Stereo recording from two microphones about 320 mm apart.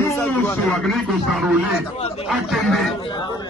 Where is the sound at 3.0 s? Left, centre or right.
Centre.